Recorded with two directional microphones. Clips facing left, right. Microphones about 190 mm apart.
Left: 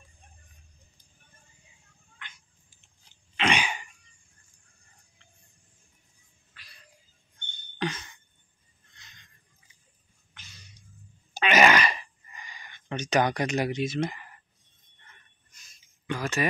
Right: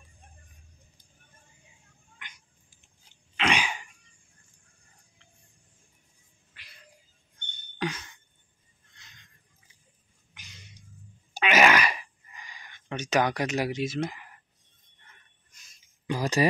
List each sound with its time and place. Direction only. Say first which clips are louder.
3.3 s throat clearing: left 1 dB; centre (ahead or behind)
11.3 s a sound: left 1 dB; 5° right (ahead or behind)
16.1 s speech: right 4 dB; 35° right (ahead or behind)